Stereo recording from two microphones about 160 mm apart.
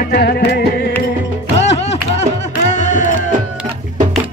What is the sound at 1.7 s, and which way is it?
Music, 45° left (ahead or behind).